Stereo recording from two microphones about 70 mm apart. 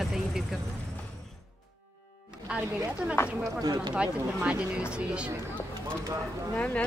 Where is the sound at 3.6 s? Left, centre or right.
Right.